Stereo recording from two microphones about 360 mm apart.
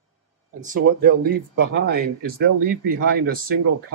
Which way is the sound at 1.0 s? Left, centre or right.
Right.